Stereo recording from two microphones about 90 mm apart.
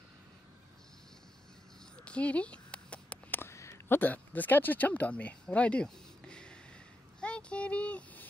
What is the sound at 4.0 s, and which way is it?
Speech, 20° left (ahead or behind).